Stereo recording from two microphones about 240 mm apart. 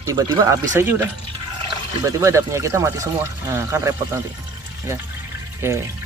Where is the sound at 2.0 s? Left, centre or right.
Centre.